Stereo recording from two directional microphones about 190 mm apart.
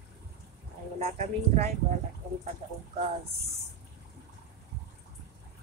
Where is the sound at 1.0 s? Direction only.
35° right (ahead or behind).